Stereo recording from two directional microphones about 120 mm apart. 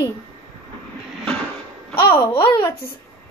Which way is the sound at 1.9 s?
40° left (ahead or behind).